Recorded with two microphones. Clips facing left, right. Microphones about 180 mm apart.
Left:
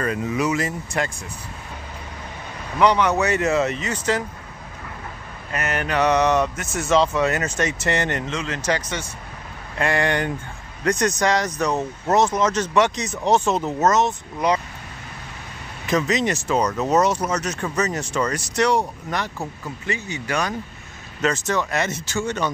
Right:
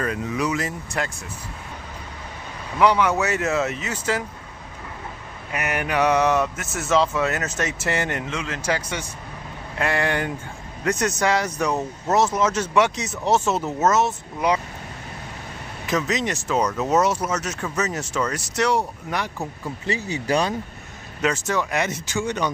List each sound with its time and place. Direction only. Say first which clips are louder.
0.0 s speech: left 2 dB; centre (ahead or behind)
2.8 s speech: left 1 dB; 5° right (ahead or behind)
5.5 s speech: left 1 dB; 10° right (ahead or behind)
15.9 s speech: left 3 dB; centre (ahead or behind)
19.6 s speech: right 3 dB; 35° right (ahead or behind)
21.2 s speech: left 1 dB; 10° right (ahead or behind)